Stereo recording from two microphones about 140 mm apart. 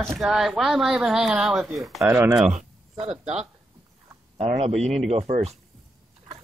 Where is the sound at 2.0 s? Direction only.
15° right (ahead or behind).